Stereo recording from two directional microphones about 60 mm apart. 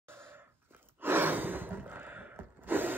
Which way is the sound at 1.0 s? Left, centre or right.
Right.